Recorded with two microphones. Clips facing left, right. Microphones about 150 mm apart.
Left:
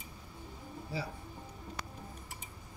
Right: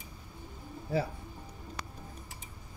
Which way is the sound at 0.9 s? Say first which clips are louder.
Right 9 dB; 55° right (ahead or behind).